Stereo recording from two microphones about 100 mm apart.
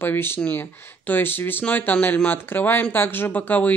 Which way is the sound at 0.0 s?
20° left (ahead or behind).